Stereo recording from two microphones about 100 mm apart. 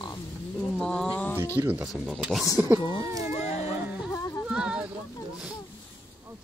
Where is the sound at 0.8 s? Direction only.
10° left (ahead or behind).